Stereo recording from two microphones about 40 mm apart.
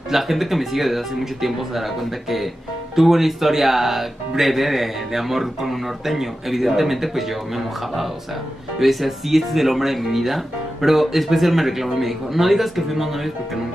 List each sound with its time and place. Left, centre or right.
0.1 s speech: centre